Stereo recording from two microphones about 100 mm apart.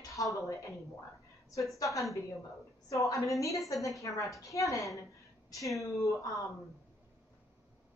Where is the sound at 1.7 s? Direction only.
35° left (ahead or behind).